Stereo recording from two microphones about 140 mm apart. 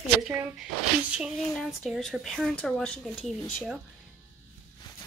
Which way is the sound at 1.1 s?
5° right (ahead or behind).